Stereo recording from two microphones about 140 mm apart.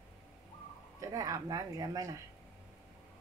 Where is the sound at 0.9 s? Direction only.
25° right (ahead or behind).